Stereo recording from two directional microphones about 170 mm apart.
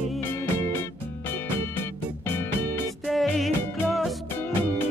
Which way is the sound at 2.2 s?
15° left (ahead or behind).